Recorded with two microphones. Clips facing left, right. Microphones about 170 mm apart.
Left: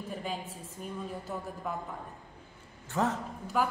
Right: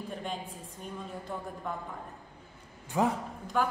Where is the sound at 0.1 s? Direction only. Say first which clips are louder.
Left 1 dB; 5° left (ahead or behind).